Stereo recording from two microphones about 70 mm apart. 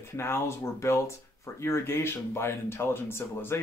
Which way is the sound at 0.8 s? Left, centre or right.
Left.